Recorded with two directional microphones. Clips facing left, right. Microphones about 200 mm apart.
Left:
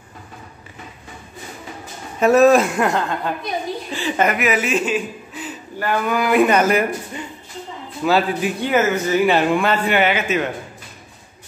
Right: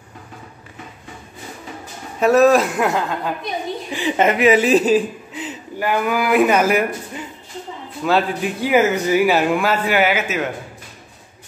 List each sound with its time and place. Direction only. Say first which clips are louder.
2.1 s speech: left 1 dB; centre (ahead or behind)
3.9 s speech: right 3 dB; 20° right (ahead or behind); by 5.0 s 35° right (ahead or behind)
5.3 s speech: right 2 dB; 20° right (ahead or behind); by 10.5 s 5° right (ahead or behind)